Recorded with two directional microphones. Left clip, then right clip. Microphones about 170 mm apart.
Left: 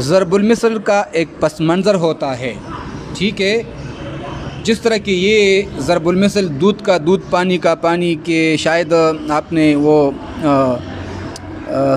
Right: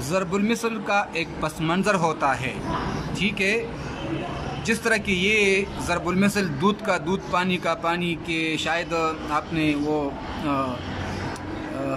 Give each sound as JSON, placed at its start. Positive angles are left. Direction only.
{"t": 0.0, "sound": "speech", "side_deg": 30}
{"t": 1.6, "sound": "a man's voice", "side_deg": 25}
{"t": 4.6, "sound": "a man's voice", "side_deg": 25}
{"t": 7.1, "sound": "speech", "side_deg": 30}